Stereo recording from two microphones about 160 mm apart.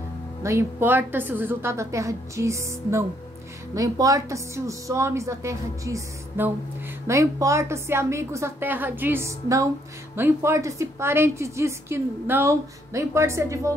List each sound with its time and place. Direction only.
0.4 s a woman's voice: 15° right (ahead or behind)